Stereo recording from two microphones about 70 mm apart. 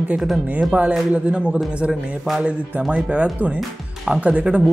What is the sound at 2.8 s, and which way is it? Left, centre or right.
Speech, centre.